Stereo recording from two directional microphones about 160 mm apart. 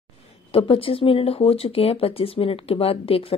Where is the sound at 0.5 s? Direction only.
35° left (ahead or behind).